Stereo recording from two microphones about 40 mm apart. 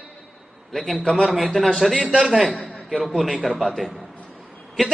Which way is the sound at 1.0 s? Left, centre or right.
Centre.